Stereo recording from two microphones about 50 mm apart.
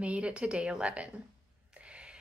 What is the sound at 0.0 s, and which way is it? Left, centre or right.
A woman's voice, right.